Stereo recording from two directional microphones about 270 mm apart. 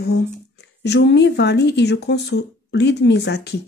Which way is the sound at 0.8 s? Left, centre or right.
Left.